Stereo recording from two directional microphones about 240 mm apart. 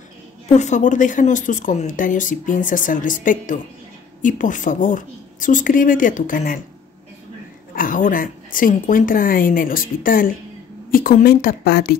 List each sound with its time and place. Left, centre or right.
0.5 s speech: left
7.7 s speech: left